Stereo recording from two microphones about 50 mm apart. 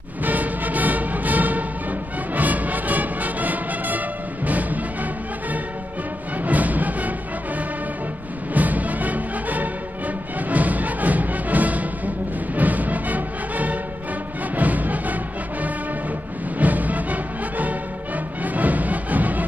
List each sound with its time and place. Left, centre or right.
0.2 s music: right
6.4 s music: right
8.5 s music: right
16.5 s music: right